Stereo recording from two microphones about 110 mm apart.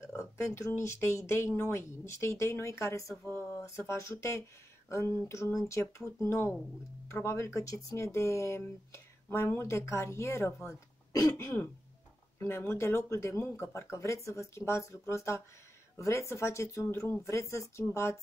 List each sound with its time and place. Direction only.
0.1 s speech: 25° left (ahead or behind)